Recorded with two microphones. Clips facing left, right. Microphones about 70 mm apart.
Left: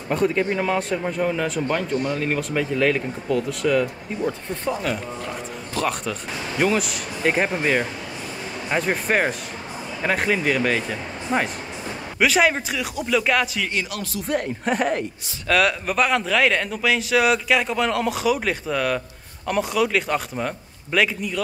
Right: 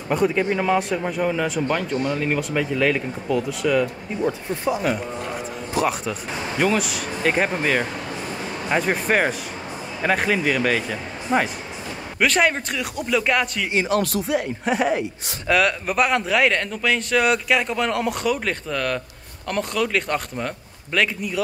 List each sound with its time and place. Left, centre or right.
0.1 s speech: centre
6.6 s speech: centre
13.7 s speech: right
14.2 s speech: centre